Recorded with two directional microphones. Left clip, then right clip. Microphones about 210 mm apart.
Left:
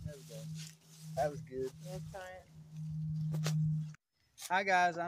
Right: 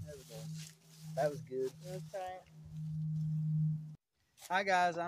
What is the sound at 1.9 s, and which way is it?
Speech, 20° left (ahead or behind).